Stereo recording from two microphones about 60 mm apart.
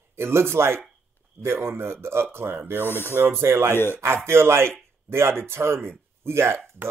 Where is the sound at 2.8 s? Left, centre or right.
Left.